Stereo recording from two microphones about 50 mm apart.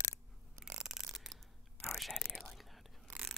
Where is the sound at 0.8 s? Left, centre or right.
Centre.